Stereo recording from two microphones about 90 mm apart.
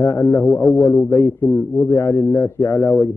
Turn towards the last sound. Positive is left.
turn(degrees=40)  # may be behind; listen again after turning